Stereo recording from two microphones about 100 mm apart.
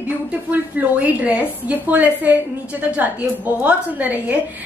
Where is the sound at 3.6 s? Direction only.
15° right (ahead or behind).